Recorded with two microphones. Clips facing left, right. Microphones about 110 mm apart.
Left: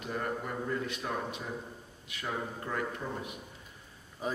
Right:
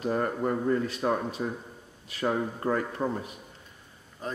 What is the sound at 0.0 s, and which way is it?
Speech, 45° right (ahead or behind).